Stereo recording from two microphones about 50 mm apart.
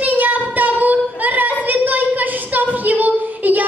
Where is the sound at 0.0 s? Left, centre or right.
Right.